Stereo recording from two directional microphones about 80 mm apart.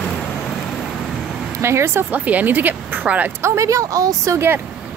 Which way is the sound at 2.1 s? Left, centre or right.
Centre.